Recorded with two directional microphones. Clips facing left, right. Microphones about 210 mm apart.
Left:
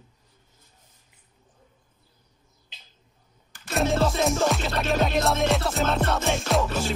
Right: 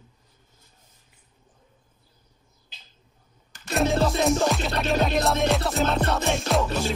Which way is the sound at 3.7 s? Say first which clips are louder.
Right 1 dB; centre (ahead or behind).